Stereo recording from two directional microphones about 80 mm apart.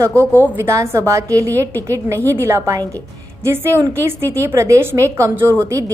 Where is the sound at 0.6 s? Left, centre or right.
Right.